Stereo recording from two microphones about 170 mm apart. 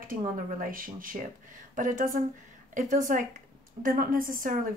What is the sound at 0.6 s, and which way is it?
Speech, 55° right (ahead or behind).